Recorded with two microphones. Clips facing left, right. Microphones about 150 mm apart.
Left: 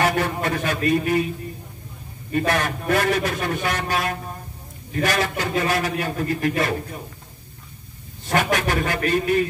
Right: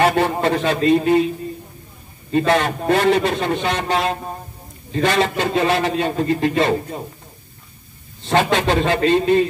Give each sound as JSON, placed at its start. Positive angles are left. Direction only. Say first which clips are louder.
{"t": 0.0, "sound": "a man's voice", "louder": "right 5 dB", "side_deg": -25}
{"t": 2.3, "sound": "a man's voice", "louder": "right 5 dB", "side_deg": -25}
{"t": 8.3, "sound": "a man's voice", "louder": "right 4 dB", "side_deg": -25}